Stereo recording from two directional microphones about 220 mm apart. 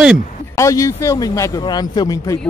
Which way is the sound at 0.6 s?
15° left (ahead or behind).